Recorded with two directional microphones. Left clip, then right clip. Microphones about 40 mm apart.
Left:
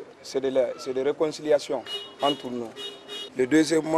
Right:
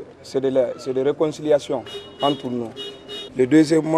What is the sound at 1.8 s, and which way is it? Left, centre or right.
Speech, left.